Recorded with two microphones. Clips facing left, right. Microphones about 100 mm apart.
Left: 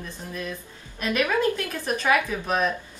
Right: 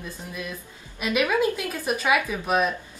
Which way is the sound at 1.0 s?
10° right (ahead or behind).